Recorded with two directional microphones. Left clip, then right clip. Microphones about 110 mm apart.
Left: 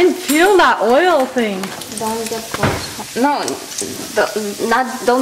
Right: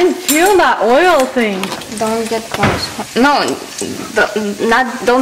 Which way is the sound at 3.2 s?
30° right (ahead or behind).